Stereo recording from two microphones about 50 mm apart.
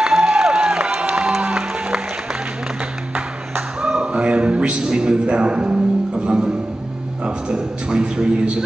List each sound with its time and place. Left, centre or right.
0.0 s music: centre
3.9 s a sound: right
4.8 s music: centre
7.2 s a man's voice: centre